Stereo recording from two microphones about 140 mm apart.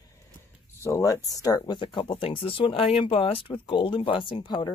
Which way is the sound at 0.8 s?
25° left (ahead or behind).